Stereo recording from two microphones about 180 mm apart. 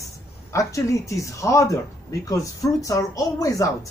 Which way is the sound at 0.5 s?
15° left (ahead or behind).